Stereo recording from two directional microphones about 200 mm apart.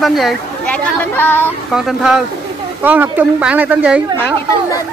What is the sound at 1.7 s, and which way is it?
Speech, 5° right (ahead or behind).